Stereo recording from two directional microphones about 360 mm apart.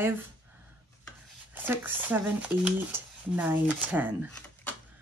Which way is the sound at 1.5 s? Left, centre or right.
Centre.